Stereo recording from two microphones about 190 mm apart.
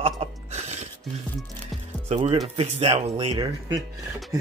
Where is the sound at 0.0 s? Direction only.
35° right (ahead or behind).